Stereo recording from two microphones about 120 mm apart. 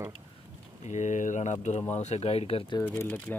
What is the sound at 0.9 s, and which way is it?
Speech, 85° left.